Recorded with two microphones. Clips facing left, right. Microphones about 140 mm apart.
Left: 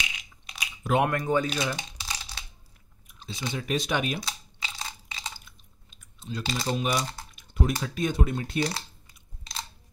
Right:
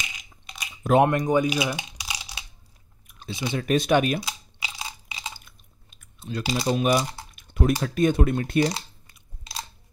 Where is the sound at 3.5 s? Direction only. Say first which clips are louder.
Right 8 dB; 55° right (ahead or behind).